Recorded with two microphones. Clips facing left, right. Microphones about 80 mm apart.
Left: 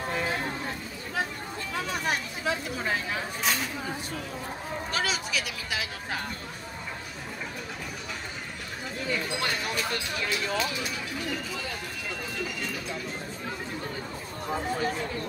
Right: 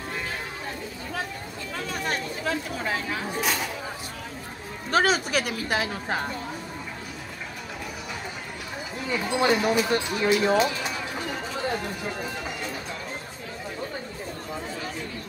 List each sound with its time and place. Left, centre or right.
1.8 s a sound: centre
4.9 s speech: right
9.1 s speech: centre
10.4 s speech: right